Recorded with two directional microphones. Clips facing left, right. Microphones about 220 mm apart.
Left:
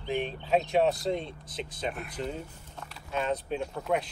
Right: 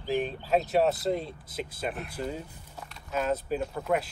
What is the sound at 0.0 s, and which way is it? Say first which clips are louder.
Speech: right 2 dB; centre (ahead or behind).